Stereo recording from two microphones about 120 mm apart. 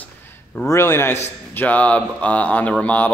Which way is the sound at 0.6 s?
20° left (ahead or behind).